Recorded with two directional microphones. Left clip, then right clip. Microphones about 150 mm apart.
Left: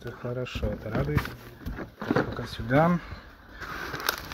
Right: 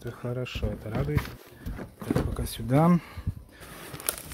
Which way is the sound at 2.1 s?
60° right (ahead or behind).